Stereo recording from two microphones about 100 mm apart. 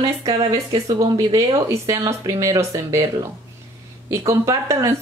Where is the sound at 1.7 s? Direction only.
30° right (ahead or behind).